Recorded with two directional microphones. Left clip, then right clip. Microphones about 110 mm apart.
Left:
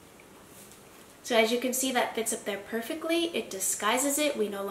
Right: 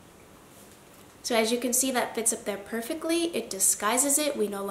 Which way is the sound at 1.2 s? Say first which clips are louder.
Left 1 dB; 30° right (ahead or behind).